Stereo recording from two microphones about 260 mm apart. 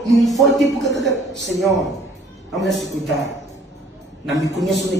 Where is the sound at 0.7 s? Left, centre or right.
Left.